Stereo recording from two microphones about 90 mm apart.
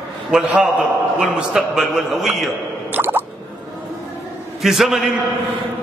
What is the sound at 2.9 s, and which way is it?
Drip, 20° right (ahead or behind).